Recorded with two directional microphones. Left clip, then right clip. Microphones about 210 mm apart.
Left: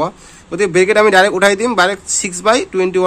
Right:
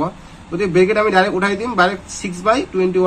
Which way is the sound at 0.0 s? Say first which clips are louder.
Left 4 dB; 40° left (ahead or behind).